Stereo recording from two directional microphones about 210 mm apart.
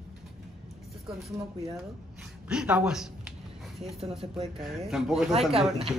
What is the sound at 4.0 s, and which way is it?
Speech, 30° right (ahead or behind).